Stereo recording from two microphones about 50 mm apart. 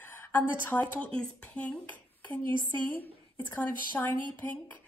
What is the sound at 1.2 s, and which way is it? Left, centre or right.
Speech, left.